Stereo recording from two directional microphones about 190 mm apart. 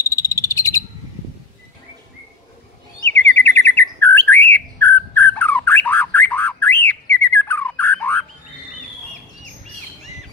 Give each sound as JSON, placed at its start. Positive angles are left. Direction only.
{"t": 0.0, "sound": "cricket", "side_deg": 15}
{"t": 3.1, "sound": "bird", "side_deg": 10}